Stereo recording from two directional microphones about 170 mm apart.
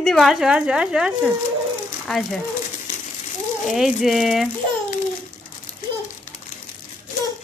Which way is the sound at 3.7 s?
Centre (ahead or behind).